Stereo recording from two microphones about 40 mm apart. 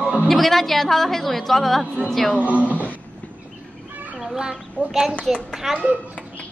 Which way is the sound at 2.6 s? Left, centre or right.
Left.